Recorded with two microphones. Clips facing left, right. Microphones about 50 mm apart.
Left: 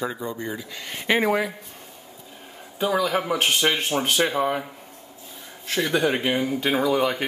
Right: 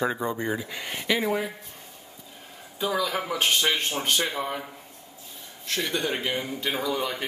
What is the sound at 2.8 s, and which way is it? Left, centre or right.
A man's voice, centre.